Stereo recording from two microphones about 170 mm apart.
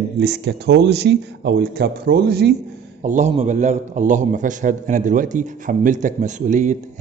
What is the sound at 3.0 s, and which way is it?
A man's voice, 45° right (ahead or behind).